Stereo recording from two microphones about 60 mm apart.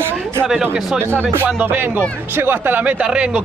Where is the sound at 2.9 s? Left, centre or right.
Centre.